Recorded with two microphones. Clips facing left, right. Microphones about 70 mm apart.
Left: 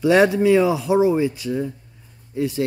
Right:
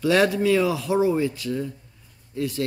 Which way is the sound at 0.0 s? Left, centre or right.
Left.